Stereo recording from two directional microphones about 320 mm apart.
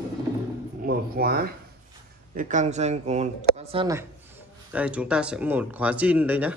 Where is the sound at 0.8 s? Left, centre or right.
Right.